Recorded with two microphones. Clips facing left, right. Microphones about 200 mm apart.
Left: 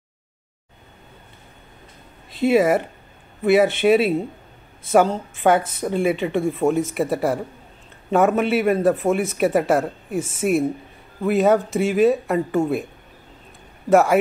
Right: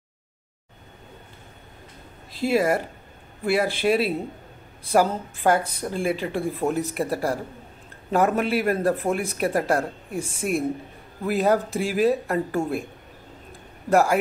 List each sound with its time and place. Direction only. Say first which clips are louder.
2.3 s speech: left 5 dB; centre (ahead or behind)
13.8 s speech: left 4 dB; centre (ahead or behind)